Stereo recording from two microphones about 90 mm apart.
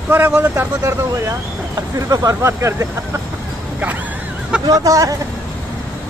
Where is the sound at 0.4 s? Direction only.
30° right (ahead or behind).